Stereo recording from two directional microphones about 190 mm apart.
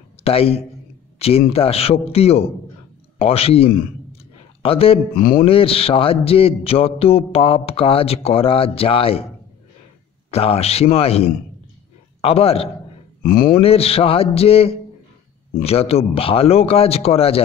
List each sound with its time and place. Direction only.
0.2 s a man's voice: 30° left (ahead or behind)
5.1 s speech: 45° left (ahead or behind)
5.4 s a man's voice: 30° left (ahead or behind)
10.3 s a man's voice: 30° left (ahead or behind)
13.2 s speech: 50° left (ahead or behind)
13.6 s speech: 30° left (ahead or behind)